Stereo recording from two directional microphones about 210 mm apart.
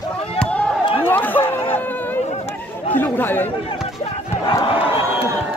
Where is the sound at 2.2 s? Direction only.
30° left (ahead or behind).